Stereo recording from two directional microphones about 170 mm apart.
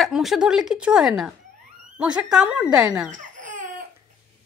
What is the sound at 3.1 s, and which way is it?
Crying, 50° right (ahead or behind).